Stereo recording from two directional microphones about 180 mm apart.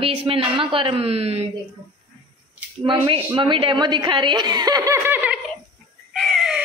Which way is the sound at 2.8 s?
25° right (ahead or behind).